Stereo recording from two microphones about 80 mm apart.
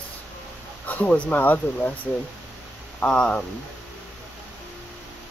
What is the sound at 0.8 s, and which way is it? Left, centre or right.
Speech, centre.